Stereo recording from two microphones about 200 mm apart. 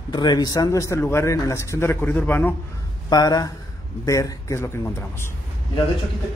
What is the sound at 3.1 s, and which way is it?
A man's voice, 20° left (ahead or behind).